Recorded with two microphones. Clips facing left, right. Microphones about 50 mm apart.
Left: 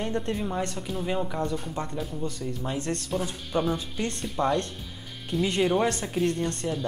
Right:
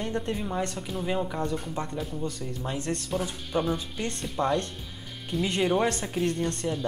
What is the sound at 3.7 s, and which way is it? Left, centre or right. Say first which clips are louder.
Speech: left 1 dB; centre.